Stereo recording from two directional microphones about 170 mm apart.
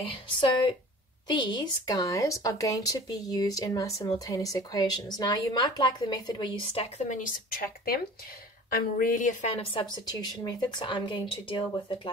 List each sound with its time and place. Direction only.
0.0 s speech: 30° left (ahead or behind)
7.1 s speech: 60° left (ahead or behind); by 12.1 s 30° left (ahead or behind)